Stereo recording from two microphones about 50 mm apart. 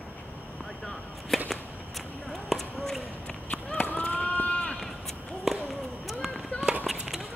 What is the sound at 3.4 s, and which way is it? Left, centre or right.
Run, left.